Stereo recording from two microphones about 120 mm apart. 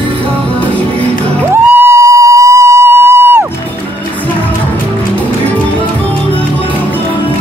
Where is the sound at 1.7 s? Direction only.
20° right (ahead or behind).